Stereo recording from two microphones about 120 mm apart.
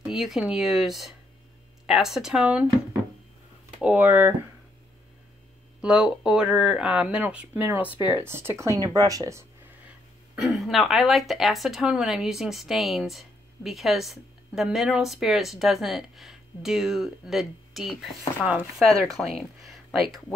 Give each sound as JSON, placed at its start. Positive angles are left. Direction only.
{"t": 0.0, "sound": "speech", "side_deg": 0}
{"t": 3.8, "sound": "speech", "side_deg": -10}
{"t": 5.8, "sound": "speech", "side_deg": -5}
{"t": 9.8, "sound": "speech", "side_deg": -5}